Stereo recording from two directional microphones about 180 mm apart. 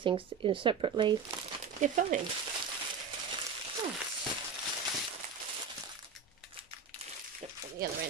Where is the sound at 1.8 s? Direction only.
45° right (ahead or behind).